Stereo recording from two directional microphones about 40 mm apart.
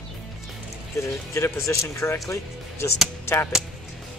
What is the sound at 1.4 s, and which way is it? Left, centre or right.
Speech, left.